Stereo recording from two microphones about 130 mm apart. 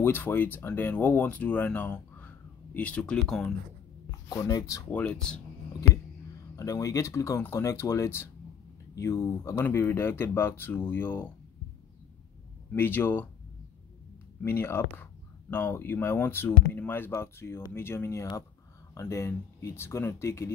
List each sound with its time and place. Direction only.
0.0 s speech: 15° left (ahead or behind)
4.3 s speech: 25° left (ahead or behind)
4.9 s speech: 10° left (ahead or behind)
6.5 s speech: 25° left (ahead or behind)
12.7 s speech: 15° left (ahead or behind)
14.4 s speech: 20° left (ahead or behind)